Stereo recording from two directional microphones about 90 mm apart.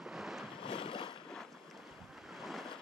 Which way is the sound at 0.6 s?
80° left.